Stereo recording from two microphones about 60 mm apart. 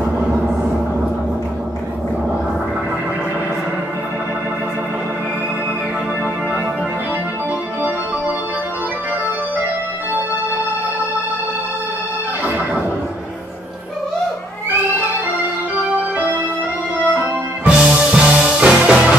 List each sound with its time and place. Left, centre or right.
17.6 s music: centre